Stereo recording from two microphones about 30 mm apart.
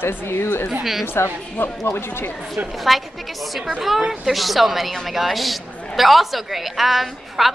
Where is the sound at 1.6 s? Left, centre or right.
Left.